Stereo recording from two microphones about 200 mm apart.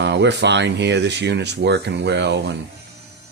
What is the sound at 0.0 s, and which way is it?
Speech, 60° right (ahead or behind).